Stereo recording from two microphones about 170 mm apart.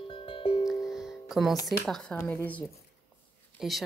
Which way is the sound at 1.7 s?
Centre (ahead or behind).